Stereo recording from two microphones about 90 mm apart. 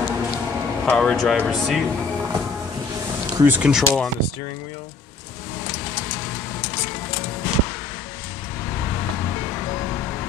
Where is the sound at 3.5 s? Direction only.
10° right (ahead or behind).